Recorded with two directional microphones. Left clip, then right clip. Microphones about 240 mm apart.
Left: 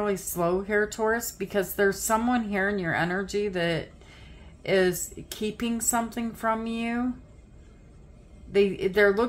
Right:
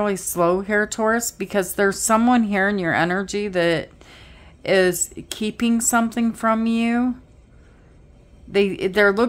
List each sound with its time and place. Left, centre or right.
0.0 s a woman's voice: right
8.5 s a woman's voice: right